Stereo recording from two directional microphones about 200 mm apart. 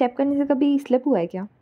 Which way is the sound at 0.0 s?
Centre (ahead or behind).